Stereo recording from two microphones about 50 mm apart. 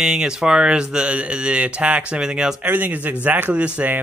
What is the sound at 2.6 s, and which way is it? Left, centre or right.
Speech, right.